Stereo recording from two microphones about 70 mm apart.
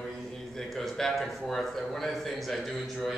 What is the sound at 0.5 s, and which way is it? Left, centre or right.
A man's voice, centre.